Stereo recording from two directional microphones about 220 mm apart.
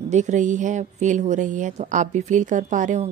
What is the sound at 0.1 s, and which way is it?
A woman's voice, 35° right (ahead or behind).